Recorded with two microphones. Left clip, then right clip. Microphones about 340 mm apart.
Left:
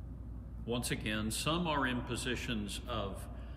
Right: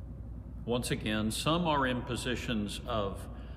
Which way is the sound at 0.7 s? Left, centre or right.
Centre.